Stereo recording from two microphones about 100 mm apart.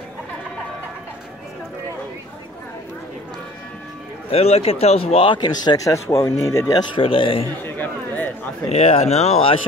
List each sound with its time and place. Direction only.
4.3 s speech: 90° left; by 5.9 s 45° left (ahead or behind)
5.9 s speech: 30° left (ahead or behind)
7.0 s a man's voice: 65° left (ahead or behind)
7.6 s speech: 20° left (ahead or behind)
8.6 s speech: 90° left